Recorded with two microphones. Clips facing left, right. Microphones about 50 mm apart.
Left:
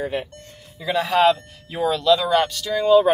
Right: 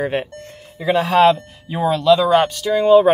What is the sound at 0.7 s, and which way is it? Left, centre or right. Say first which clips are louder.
Speech: right 5 dB; right.